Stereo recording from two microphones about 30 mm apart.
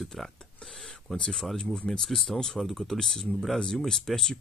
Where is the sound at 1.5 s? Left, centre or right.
Left.